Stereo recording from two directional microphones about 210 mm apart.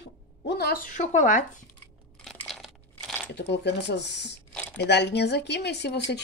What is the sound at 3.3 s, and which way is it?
A woman's voice, 55° left (ahead or behind).